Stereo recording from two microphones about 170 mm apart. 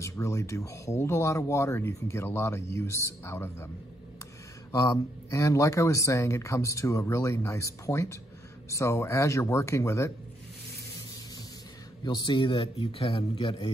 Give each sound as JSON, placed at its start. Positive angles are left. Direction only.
{"t": 0.0, "sound": "speech", "side_deg": 15}
{"t": 4.7, "sound": "speech", "side_deg": 20}
{"t": 12.0, "sound": "a man's voice", "side_deg": 25}